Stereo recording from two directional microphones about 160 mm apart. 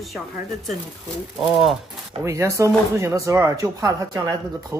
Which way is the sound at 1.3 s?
Centre (ahead or behind).